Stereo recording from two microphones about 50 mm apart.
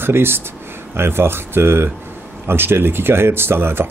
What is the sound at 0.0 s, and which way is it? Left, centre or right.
Speech, right.